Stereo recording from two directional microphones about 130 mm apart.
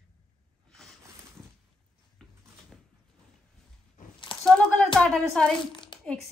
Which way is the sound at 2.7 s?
Centre (ahead or behind).